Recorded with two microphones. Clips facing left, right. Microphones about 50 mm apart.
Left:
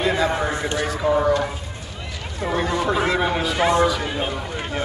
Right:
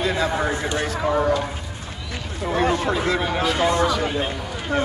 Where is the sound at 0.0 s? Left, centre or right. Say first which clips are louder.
Left 2 dB; centre.